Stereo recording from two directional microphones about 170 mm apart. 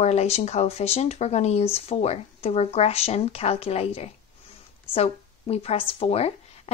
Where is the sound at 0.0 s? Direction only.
40° left (ahead or behind).